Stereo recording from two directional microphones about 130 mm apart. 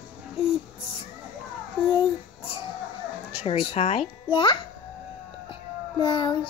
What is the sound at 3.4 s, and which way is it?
A child's voice, 40° left (ahead or behind).